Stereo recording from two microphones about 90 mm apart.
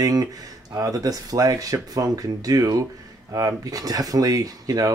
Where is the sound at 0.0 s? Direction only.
45° right (ahead or behind).